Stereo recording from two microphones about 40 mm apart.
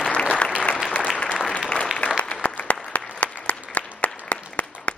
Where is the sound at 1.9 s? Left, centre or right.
Left.